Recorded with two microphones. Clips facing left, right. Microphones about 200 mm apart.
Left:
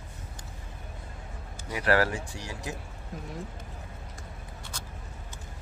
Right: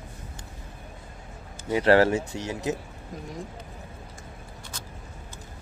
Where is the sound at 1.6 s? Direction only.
25° right (ahead or behind).